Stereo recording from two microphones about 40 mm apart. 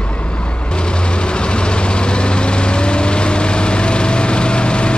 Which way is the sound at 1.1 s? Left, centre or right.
Left.